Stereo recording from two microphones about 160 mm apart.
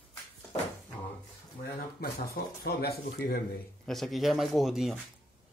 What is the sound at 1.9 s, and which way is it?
Speech, 75° left (ahead or behind).